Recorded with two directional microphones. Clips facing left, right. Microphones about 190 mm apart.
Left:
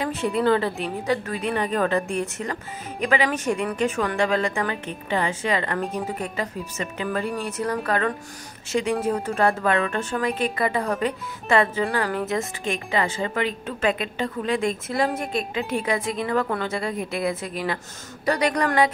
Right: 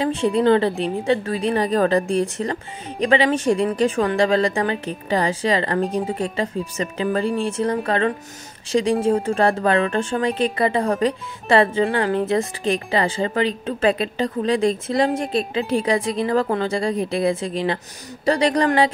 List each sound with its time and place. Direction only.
0.0 s a woman's voice: 30° right (ahead or behind)